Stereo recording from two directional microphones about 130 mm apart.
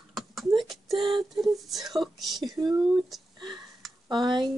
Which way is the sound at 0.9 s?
40° right (ahead or behind).